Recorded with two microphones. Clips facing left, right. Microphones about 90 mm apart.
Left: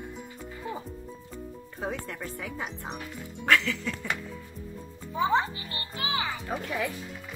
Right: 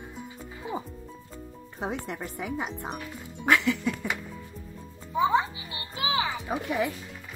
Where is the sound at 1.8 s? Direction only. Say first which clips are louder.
Right 2 dB; 20° right (ahead or behind).